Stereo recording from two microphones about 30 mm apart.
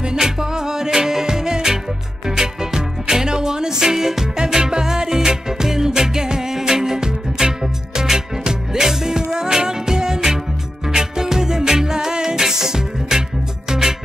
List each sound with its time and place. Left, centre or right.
0.2 s music: centre